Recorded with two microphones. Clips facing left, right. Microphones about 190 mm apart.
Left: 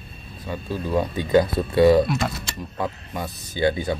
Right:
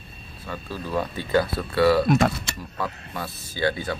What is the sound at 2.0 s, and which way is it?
Speech, 50° right (ahead or behind).